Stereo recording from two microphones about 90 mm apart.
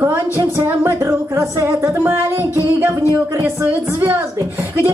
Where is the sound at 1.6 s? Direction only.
30° right (ahead or behind).